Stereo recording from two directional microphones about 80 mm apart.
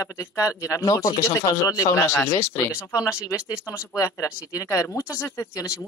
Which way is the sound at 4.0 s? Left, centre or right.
Left.